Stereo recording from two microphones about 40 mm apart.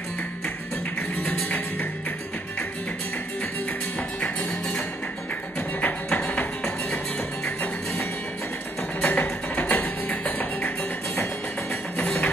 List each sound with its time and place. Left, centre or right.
1.1 s music: left
6.0 s music: left
9.0 s music: left
12.0 s music: left